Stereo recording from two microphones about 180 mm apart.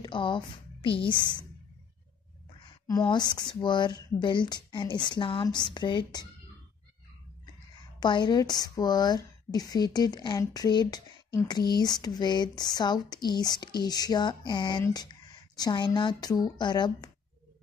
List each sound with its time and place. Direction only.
0.0 s a woman's voice: 25° left (ahead or behind)
2.9 s a woman's voice: 20° left (ahead or behind)
8.0 s a woman's voice: 25° left (ahead or behind)